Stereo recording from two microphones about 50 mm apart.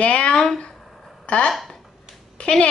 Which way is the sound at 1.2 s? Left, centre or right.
Left.